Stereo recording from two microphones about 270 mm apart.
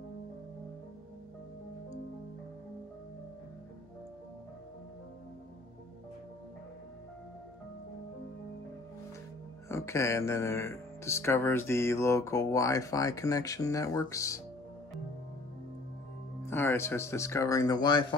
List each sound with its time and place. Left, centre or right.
9.7 s speech: centre
16.4 s speech: centre